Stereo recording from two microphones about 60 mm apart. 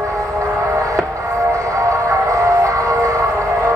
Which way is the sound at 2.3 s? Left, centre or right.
Right.